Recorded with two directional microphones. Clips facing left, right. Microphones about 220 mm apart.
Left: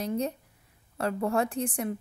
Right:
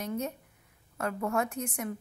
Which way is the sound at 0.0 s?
35° left (ahead or behind).